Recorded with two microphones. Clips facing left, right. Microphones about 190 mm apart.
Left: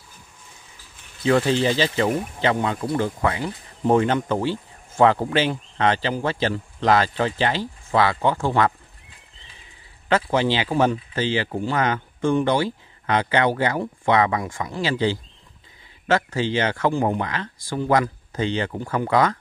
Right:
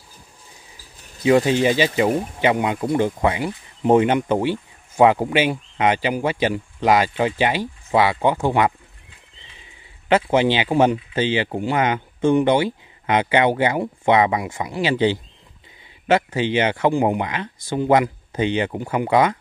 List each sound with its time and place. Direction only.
1.2 s speech: 15° right (ahead or behind)
10.0 s speech: 20° right (ahead or behind)